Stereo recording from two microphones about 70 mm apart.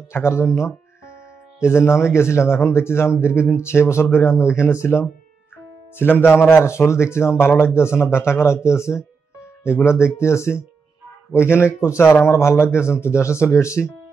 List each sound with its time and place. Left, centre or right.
0.1 s speech: left